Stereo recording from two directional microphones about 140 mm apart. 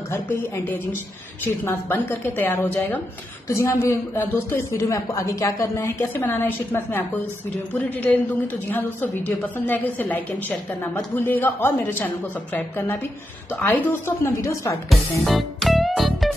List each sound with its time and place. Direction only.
0.1 s a woman's voice: 15° left (ahead or behind)
14.9 s music: centre (ahead or behind)